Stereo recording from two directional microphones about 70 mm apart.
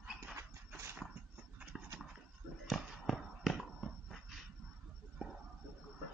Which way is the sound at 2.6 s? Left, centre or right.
Centre.